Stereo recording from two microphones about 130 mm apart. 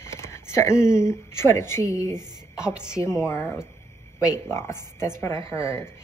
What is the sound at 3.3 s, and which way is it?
Speech, 15° left (ahead or behind).